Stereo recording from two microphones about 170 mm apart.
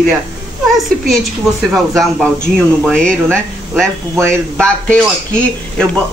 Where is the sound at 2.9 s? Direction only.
5° left (ahead or behind).